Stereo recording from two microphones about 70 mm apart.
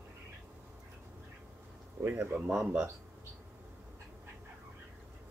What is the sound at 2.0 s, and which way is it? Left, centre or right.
Speech, right.